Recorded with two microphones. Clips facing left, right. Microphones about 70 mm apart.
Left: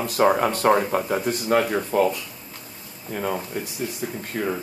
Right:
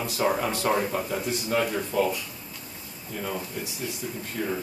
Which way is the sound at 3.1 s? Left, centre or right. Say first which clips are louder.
Left 6 dB; left.